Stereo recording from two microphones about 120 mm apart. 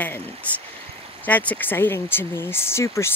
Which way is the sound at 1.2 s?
15° left (ahead or behind).